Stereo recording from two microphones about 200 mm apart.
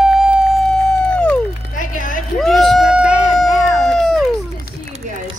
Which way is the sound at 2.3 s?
Centre (ahead or behind).